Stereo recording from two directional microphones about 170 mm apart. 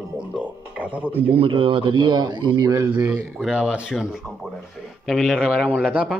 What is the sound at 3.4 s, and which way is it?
A man's voice, 5° right (ahead or behind).